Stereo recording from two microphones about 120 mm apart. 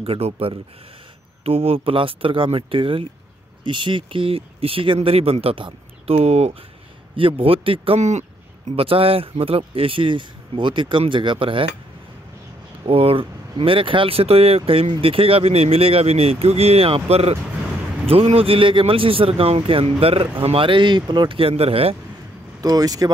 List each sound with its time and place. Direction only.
0.0 s speech: 55° right (ahead or behind)
7.2 s speech: 50° right (ahead or behind)
8.0 s speech: 75° right (ahead or behind)
8.7 s speech: 50° right (ahead or behind)
12.8 s speech: 55° right (ahead or behind)
22.6 s speech: 30° right (ahead or behind)